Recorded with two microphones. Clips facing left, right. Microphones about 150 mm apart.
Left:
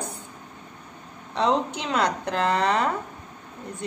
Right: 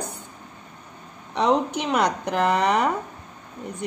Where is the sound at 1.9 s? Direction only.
15° right (ahead or behind).